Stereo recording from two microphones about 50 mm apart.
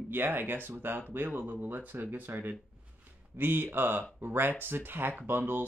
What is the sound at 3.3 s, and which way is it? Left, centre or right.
Speech, right.